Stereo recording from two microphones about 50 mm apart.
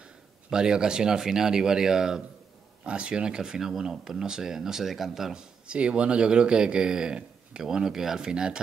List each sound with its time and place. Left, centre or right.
0.0 s speech: centre
5.7 s speech: right